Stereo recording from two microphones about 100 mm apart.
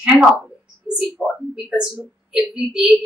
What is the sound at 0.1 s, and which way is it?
Speech, 15° left (ahead or behind).